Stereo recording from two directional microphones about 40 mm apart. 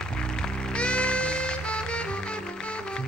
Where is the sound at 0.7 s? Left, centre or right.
Left.